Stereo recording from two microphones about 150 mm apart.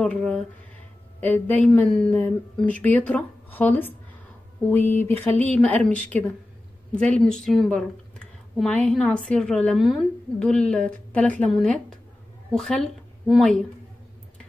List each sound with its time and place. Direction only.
0.0 s a woman's voice: 5° left (ahead or behind)
4.9 s a woman's voice: 15° left (ahead or behind)